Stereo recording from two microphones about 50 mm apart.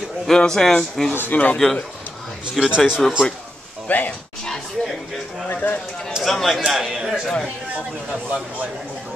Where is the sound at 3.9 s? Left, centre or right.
Left.